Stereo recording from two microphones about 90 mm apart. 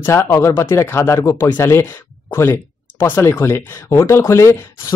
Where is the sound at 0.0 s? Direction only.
30° left (ahead or behind).